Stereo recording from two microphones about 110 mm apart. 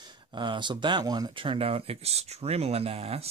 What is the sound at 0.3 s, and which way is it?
Speech, 45° right (ahead or behind).